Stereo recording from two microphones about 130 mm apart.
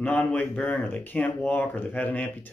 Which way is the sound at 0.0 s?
10° left (ahead or behind).